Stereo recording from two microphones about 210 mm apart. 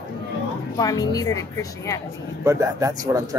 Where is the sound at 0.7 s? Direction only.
15° left (ahead or behind).